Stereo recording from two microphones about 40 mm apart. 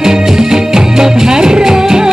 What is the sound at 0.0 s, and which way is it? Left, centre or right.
Music, centre.